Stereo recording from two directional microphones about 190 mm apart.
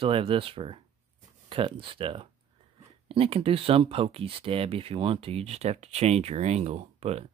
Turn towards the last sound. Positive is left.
turn(degrees=-35)  # may be behind; listen again after turning